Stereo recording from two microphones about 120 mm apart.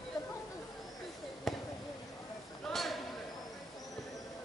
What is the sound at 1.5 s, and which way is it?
Basketball bounce, centre (ahead or behind).